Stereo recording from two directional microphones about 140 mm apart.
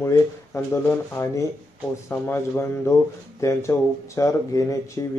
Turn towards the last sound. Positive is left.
turn(degrees=25)  # may be behind; listen again after turning